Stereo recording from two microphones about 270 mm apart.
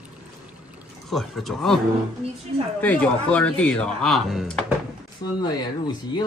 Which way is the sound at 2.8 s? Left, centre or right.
Centre.